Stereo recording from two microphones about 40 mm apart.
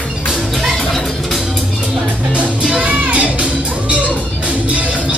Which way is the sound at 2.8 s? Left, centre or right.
Right.